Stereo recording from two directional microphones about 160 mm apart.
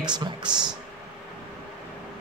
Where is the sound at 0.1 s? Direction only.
30° right (ahead or behind).